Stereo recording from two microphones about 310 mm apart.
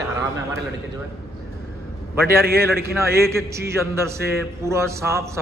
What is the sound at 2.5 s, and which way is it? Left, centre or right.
Speech, right.